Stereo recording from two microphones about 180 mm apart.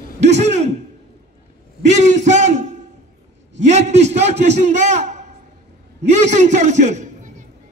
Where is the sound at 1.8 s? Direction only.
40° right (ahead or behind).